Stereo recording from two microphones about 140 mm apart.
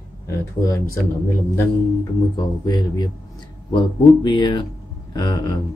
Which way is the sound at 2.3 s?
30° left (ahead or behind).